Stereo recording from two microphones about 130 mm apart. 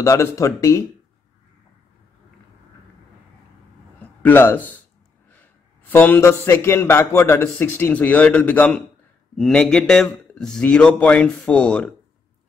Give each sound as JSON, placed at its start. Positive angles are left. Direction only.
{"t": 0.0, "sound": "speech", "side_deg": 25}
{"t": 4.0, "sound": "a man's voice", "side_deg": 15}